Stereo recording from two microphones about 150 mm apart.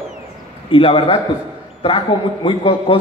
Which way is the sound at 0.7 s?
35° left (ahead or behind).